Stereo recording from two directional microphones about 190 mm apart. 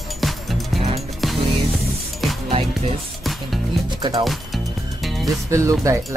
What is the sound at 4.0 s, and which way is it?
Speech, 20° right (ahead or behind).